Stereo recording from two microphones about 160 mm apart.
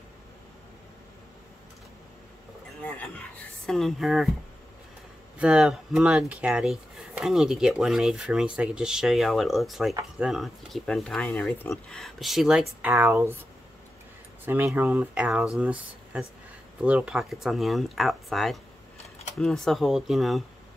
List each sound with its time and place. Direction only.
2.8 s a sound: 10° left (ahead or behind)
3.6 s speech: centre (ahead or behind)
5.4 s speech: 5° right (ahead or behind)
11.2 s speech: 15° left (ahead or behind); by 12.9 s 5° right (ahead or behind)
12.9 s speech: 15° right (ahead or behind)
14.4 s speech: 10° right (ahead or behind)